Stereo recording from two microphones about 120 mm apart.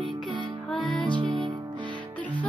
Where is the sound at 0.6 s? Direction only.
5° left (ahead or behind).